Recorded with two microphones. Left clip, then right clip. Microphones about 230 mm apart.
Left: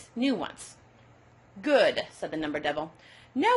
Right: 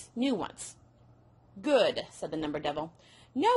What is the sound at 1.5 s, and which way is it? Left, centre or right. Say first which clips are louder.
A woman's voice: left 3 dB; right.